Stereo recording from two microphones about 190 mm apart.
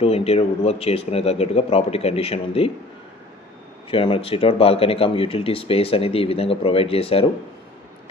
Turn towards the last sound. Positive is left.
turn(degrees=30)  # may be behind; listen again after turning